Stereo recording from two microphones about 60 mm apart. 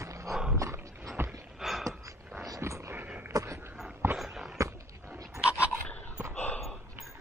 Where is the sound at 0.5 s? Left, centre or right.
Right.